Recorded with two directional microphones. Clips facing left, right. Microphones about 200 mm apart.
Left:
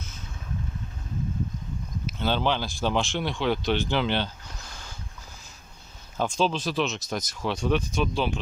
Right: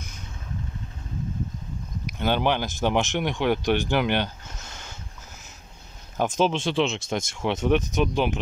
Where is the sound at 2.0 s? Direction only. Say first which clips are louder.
Right 2 dB; 15° right (ahead or behind).